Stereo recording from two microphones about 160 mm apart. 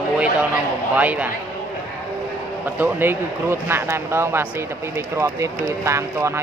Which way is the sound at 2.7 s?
15° right (ahead or behind).